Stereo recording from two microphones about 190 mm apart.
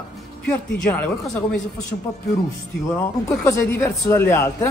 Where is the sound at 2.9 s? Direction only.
15° left (ahead or behind).